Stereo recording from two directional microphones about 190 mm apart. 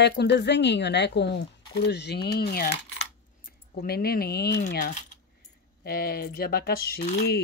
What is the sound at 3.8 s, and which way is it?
Speech, 55° left (ahead or behind).